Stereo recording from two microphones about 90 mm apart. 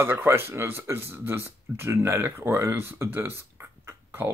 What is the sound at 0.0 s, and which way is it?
Speech, 25° right (ahead or behind).